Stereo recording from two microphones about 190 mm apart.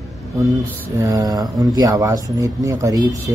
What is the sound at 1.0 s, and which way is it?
Speech, 20° right (ahead or behind).